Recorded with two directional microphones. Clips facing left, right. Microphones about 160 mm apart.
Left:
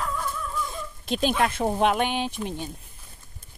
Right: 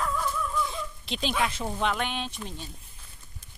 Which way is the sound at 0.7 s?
50° left (ahead or behind).